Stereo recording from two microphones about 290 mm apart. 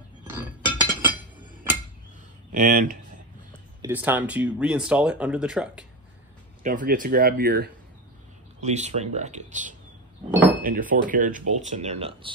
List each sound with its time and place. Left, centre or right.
2.5 s speech: right
3.8 s speech: centre
6.6 s speech: right
10.3 s a sound: centre
10.6 s speech: right